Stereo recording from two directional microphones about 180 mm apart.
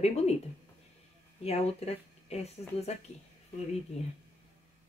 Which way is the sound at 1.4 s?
35° left (ahead or behind).